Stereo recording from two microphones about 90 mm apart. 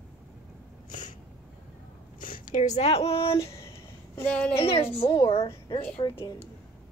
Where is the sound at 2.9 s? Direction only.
90° left.